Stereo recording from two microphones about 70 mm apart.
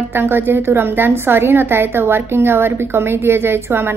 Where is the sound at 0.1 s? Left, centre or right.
Right.